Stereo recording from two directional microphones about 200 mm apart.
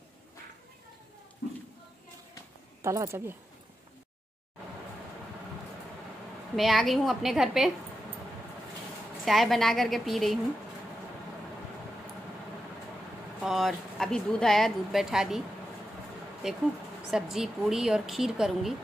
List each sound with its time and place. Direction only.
2.8 s speech: 15° right (ahead or behind)
6.5 s speech: centre (ahead or behind)
9.2 s speech: centre (ahead or behind)
13.4 s speech: centre (ahead or behind)
16.4 s speech: centre (ahead or behind)